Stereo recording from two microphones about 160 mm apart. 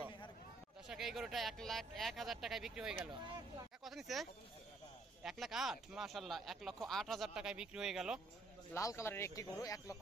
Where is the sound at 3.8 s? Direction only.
Centre (ahead or behind).